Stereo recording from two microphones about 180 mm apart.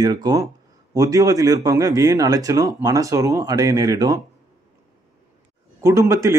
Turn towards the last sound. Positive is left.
turn(degrees=-15)  # may be behind; listen again after turning